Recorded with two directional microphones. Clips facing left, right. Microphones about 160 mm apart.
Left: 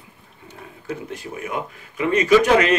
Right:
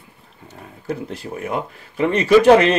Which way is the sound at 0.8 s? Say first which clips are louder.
Right 3 dB; 35° right (ahead or behind).